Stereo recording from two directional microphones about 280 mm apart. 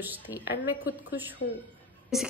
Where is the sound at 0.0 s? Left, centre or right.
Centre.